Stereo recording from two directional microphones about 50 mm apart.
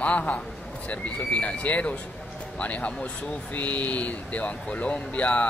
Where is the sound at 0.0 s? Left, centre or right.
Left.